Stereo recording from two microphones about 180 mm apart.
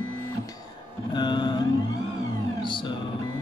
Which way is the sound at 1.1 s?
25° left (ahead or behind).